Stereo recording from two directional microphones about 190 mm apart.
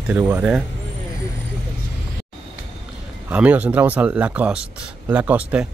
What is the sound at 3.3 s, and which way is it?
Speech, 10° right (ahead or behind).